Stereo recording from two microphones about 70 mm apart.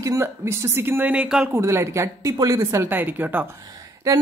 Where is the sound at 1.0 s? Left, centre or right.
Centre.